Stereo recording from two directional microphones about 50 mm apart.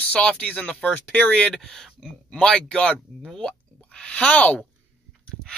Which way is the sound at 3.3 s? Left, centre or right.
Centre.